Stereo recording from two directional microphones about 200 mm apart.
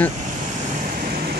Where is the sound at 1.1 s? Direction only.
50° right (ahead or behind).